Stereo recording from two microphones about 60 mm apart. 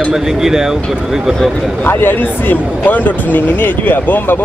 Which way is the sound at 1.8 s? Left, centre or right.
Left.